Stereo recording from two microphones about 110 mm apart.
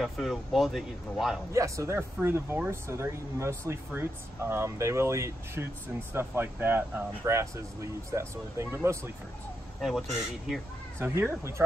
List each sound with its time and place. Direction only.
0.0 s speech: centre (ahead or behind)
1.5 s speech: 30° right (ahead or behind)
9.8 s speech: centre (ahead or behind)
11.0 s speech: 25° right (ahead or behind)